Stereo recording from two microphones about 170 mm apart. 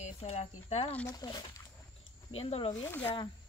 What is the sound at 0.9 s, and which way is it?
Speech, 10° left (ahead or behind).